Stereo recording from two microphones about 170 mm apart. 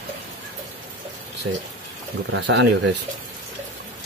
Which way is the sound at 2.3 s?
90° right.